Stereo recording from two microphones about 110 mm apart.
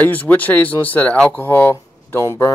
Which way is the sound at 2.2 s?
30° left (ahead or behind).